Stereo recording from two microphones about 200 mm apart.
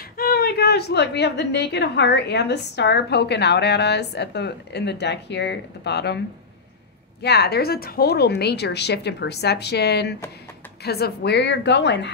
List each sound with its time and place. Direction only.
0.2 s a woman's voice: 50° left (ahead or behind)